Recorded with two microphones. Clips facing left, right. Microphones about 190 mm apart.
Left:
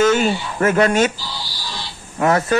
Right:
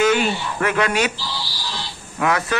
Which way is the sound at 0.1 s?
45° left (ahead or behind).